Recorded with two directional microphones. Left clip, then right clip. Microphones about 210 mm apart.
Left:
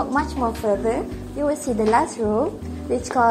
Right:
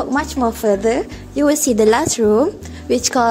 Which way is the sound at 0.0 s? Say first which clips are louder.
Right 4 dB; 45° right (ahead or behind).